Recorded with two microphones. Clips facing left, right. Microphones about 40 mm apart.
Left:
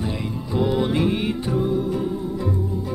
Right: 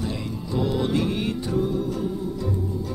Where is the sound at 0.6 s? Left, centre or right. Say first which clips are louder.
Left 3 dB; centre.